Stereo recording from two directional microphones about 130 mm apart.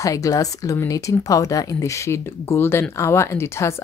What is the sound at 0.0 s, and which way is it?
Speech, 25° left (ahead or behind).